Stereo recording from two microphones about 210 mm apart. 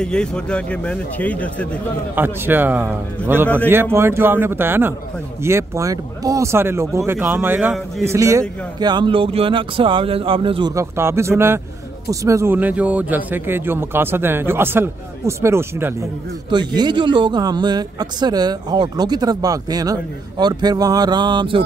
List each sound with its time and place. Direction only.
0.0 s speech: 5° left (ahead or behind)
2.1 s a man's voice: 10° right (ahead or behind)